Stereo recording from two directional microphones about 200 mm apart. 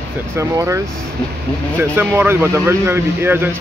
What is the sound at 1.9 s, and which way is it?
Speech, 10° right (ahead or behind).